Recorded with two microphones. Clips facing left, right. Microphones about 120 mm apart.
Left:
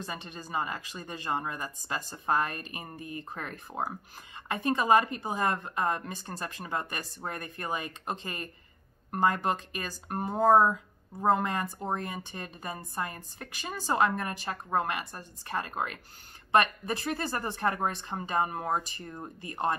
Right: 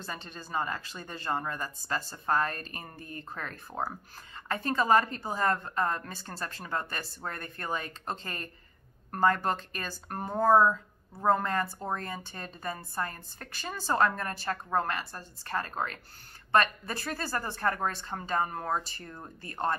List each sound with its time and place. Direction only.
0.0 s speech: 10° left (ahead or behind)